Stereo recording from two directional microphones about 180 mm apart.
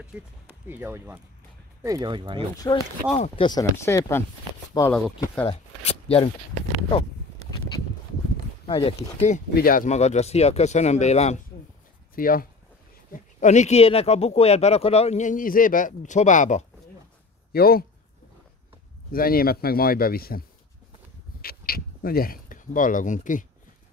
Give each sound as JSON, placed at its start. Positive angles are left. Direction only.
{"t": 0.7, "sound": "speech", "side_deg": -10}
{"t": 2.5, "sound": "speech", "side_deg": 20}
{"t": 5.9, "sound": "a sound", "side_deg": 30}
{"t": 8.6, "sound": "speech", "side_deg": 25}
{"t": 9.2, "sound": "speech", "side_deg": 45}
{"t": 12.2, "sound": "speech", "side_deg": 50}
{"t": 17.5, "sound": "speech", "side_deg": 60}
{"t": 19.1, "sound": "speech", "side_deg": 55}
{"t": 21.4, "sound": "a sound", "side_deg": 55}